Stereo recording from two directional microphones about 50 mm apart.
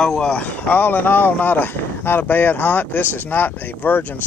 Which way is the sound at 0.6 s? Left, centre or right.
Left.